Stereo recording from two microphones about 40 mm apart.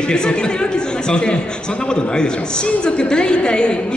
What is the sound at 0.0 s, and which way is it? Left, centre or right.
Speech, left.